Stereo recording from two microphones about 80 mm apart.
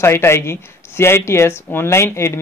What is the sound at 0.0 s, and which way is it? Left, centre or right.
Speech, left.